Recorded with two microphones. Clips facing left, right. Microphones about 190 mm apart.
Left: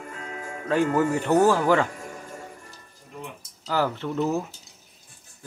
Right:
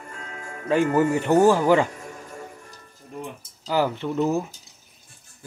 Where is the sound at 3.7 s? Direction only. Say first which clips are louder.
Right 2 dB; 15° right (ahead or behind).